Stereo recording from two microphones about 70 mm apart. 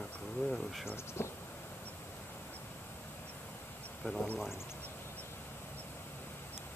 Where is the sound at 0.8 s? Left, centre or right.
Left.